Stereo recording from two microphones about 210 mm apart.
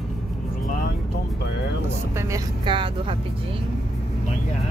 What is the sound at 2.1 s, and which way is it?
Speech, 15° right (ahead or behind).